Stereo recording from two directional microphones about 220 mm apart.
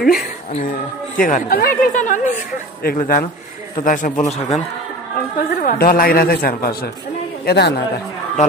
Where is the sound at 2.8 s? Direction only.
40° left (ahead or behind).